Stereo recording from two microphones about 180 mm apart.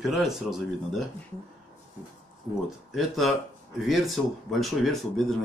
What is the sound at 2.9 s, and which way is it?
Speech, centre (ahead or behind).